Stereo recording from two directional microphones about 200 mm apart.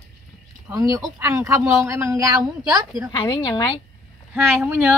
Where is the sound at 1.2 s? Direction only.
15° right (ahead or behind).